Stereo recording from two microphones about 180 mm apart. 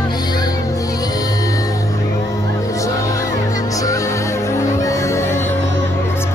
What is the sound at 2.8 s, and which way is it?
Music, 20° left (ahead or behind).